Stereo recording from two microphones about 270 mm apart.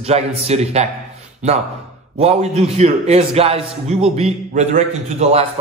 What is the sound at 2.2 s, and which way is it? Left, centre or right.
A man's voice, right.